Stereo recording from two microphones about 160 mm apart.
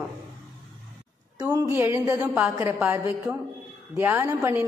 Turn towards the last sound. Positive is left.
turn(degrees=-20)  # may be behind; listen again after turning